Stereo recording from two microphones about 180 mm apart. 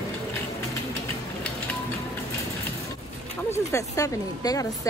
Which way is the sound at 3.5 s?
15° left (ahead or behind).